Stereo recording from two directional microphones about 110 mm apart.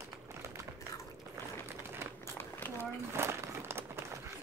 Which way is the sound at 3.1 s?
25° right (ahead or behind).